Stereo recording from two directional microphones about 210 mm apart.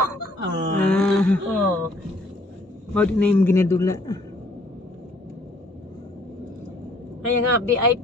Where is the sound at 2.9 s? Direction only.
5° left (ahead or behind).